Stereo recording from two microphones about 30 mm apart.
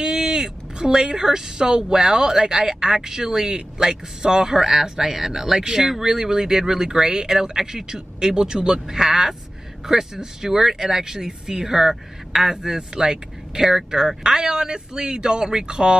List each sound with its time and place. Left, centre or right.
0.0 s speech: right